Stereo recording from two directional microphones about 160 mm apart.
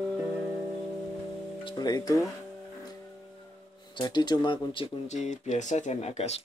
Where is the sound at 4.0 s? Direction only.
25° left (ahead or behind).